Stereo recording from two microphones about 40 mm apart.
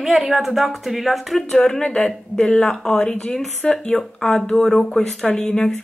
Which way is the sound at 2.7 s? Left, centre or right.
Centre.